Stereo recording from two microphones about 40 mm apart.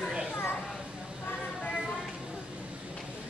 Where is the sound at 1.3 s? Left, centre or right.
Left.